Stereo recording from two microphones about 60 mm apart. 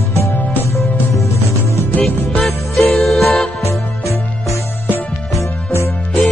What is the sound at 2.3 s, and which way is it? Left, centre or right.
Music, centre.